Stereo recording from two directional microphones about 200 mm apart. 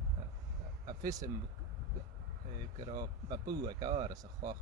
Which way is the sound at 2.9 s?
20° right (ahead or behind).